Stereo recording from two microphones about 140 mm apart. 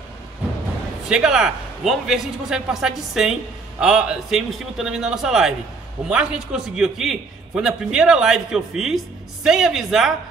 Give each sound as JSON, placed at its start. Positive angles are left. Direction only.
{"t": 1.0, "sound": "a man's voice", "side_deg": -5}